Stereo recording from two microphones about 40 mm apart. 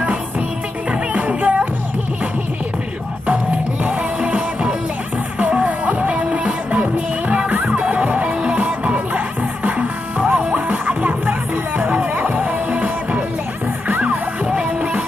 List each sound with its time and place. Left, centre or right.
1.1 s music: right
3.8 s music: right
14.4 s music: right